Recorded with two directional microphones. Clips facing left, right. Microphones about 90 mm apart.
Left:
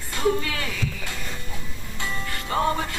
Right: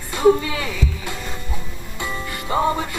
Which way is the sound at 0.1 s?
20° right (ahead or behind).